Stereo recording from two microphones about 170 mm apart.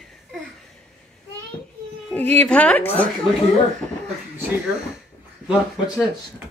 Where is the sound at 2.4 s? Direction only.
10° left (ahead or behind).